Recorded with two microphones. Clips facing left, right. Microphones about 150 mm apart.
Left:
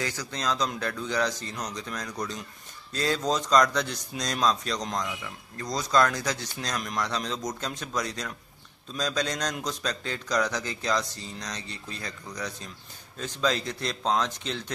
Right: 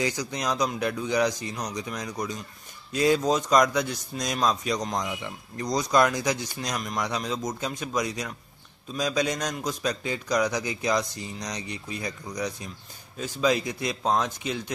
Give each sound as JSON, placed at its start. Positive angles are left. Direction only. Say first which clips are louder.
{"t": 0.0, "sound": "speech", "louder": "right 3 dB", "side_deg": -15}